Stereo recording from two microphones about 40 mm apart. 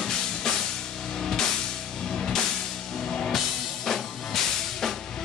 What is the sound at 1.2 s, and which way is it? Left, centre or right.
Music, centre.